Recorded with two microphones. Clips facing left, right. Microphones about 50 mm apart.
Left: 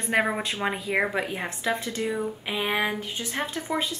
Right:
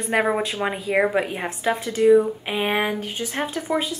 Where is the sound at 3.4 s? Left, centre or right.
Centre.